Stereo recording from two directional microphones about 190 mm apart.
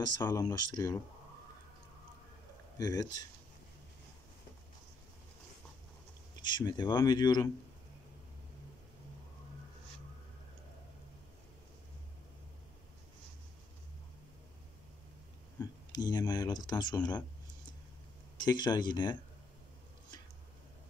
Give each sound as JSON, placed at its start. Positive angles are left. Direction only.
{"t": 0.3, "sound": "speech", "side_deg": 20}
{"t": 2.8, "sound": "speech", "side_deg": 20}
{"t": 6.4, "sound": "speech", "side_deg": 25}
{"t": 15.6, "sound": "speech", "side_deg": 20}
{"t": 18.4, "sound": "speech", "side_deg": 20}